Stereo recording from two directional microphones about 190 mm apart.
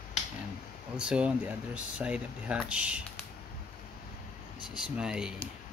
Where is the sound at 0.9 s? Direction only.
5° right (ahead or behind).